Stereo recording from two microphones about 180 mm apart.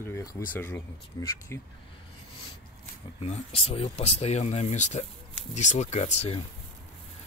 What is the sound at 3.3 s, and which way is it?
Speech, 35° left (ahead or behind).